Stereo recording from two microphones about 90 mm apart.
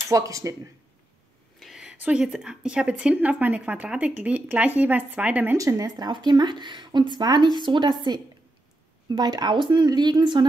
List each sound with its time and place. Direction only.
0.1 s speech: 40° right (ahead or behind)
1.6 s a sound: 5° right (ahead or behind)
2.0 s a woman's voice: 10° right (ahead or behind)
5.6 s speech: 40° right (ahead or behind)